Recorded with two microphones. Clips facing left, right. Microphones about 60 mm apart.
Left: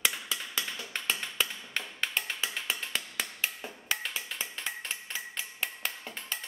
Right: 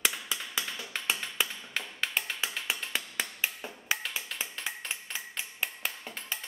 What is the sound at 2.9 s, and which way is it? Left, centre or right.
Finger snapping, centre.